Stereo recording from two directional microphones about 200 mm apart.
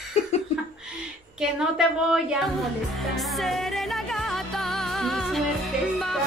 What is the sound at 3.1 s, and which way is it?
Music, centre (ahead or behind).